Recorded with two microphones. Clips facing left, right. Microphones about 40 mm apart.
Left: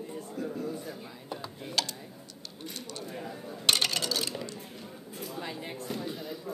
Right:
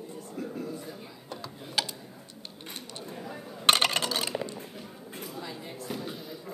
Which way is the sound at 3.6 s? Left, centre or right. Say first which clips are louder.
Right 4 dB; right.